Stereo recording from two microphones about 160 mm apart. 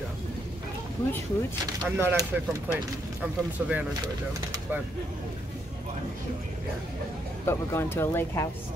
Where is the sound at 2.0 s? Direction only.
15° right (ahead or behind).